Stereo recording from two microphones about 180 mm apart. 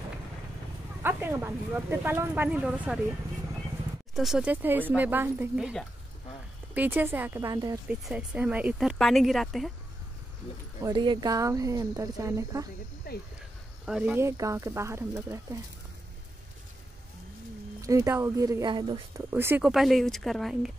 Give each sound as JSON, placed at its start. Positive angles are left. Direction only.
{"t": 1.0, "sound": "speech", "side_deg": -15}
{"t": 4.1, "sound": "speech", "side_deg": 0}
{"t": 7.9, "sound": "speech", "side_deg": -5}
{"t": 10.8, "sound": "speech", "side_deg": -25}
{"t": 13.1, "sound": "cricket", "side_deg": 60}
{"t": 13.8, "sound": "speech", "side_deg": -5}
{"t": 17.8, "sound": "speech", "side_deg": -20}
{"t": 19.3, "sound": "speech", "side_deg": -10}
{"t": 19.6, "sound": "speech", "side_deg": 0}